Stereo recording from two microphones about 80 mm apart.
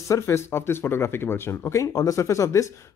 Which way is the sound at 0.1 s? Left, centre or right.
Left.